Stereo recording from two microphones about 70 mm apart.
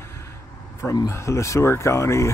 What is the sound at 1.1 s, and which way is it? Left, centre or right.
Speech, left.